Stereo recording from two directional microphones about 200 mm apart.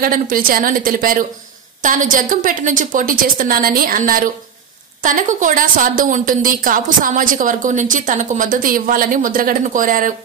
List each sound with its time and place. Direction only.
0.0 s a woman's voice: 45° right (ahead or behind)